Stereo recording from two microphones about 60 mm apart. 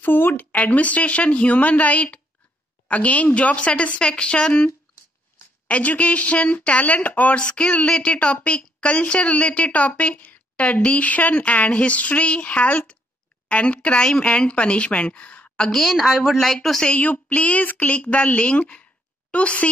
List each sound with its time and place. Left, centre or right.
0.0 s speech: left; by 4.6 s centre
5.7 s speech: left
15.7 s speech: centre
16.8 s speech: left